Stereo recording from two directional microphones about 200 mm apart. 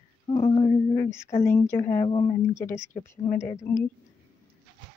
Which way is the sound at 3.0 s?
10° left (ahead or behind).